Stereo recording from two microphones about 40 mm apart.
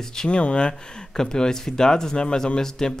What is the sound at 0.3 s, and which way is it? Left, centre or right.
Speech, left.